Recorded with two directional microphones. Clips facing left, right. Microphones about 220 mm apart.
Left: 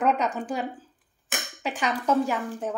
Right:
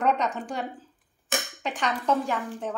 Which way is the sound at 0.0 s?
5° left (ahead or behind).